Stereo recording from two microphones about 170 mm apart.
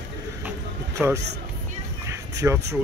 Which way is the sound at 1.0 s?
5° right (ahead or behind).